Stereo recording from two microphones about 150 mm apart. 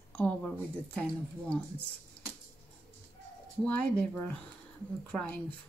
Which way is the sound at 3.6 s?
10° left (ahead or behind).